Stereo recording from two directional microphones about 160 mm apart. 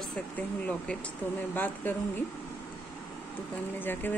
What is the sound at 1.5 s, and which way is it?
Speech, 10° left (ahead or behind).